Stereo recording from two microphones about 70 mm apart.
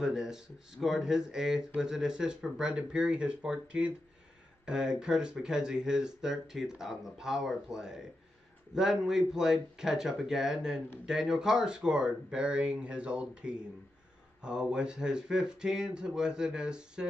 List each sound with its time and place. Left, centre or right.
0.0 s speech: centre